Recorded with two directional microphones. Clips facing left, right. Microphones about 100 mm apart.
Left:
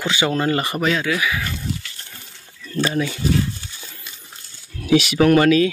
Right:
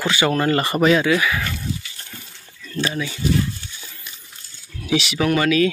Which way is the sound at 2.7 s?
45° left (ahead or behind).